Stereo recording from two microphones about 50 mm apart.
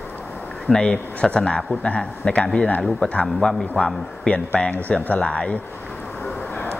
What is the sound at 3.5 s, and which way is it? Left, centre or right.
Speech, centre.